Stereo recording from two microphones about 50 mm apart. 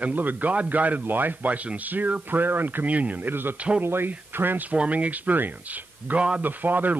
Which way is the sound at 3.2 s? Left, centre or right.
Right.